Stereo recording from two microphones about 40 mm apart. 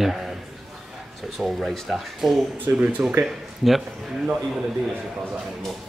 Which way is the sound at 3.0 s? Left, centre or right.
Right.